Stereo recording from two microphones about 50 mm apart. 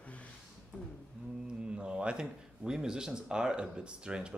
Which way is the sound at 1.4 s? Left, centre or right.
Centre.